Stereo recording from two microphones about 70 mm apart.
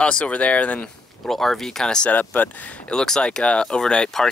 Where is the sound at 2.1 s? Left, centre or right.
Left.